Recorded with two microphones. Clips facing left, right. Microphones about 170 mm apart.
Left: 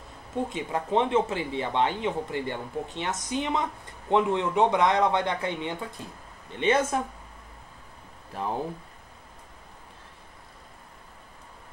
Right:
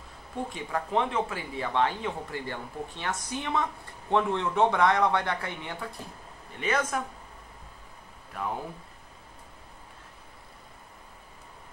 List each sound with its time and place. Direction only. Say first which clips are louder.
0.5 s speech: left 3 dB; 20° left (ahead or behind)